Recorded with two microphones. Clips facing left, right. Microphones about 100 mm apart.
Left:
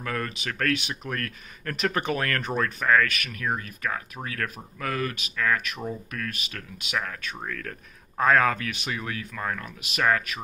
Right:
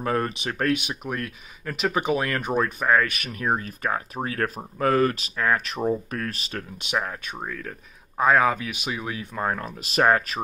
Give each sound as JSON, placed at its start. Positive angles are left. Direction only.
{"t": 0.0, "sound": "speech", "side_deg": -30}